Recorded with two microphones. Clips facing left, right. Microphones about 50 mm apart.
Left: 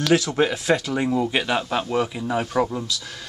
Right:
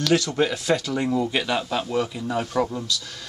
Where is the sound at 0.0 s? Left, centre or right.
Centre.